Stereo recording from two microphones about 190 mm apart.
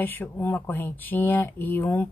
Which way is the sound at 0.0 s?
10° left (ahead or behind).